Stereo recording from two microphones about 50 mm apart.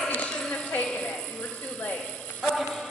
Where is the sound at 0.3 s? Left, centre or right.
Left.